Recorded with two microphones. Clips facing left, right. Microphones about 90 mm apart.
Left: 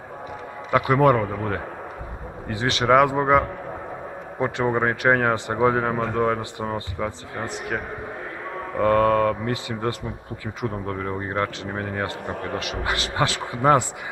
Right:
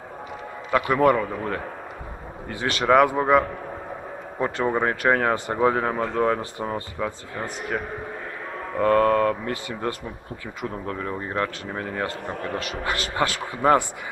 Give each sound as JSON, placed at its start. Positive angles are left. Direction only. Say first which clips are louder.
{"t": 0.7, "sound": "a man's voice", "louder": "left 1 dB", "side_deg": 20}